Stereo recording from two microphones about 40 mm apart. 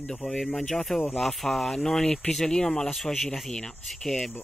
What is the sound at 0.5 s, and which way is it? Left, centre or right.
Speech, centre.